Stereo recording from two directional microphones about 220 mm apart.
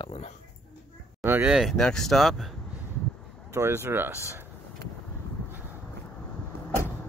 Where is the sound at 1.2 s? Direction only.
10° right (ahead or behind).